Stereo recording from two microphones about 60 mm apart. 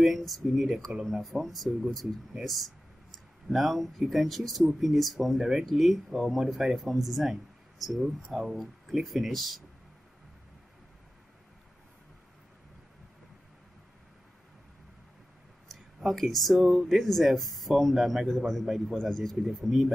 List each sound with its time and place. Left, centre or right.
0.0 s speech: centre
5.7 s speech: centre
16.0 s speech: centre
18.9 s speech: centre
19.3 s speech: centre